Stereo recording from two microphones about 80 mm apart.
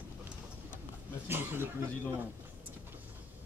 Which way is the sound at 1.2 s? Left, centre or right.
Right.